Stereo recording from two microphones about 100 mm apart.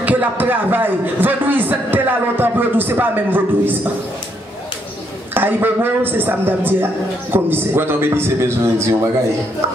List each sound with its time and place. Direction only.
0.0 s speech: 15° right (ahead or behind)
5.3 s speech: 20° right (ahead or behind)